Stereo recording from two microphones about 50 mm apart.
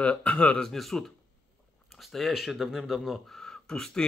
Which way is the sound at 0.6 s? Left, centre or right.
Centre.